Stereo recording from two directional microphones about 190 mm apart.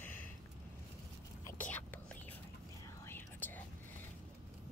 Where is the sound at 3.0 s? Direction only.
10° left (ahead or behind).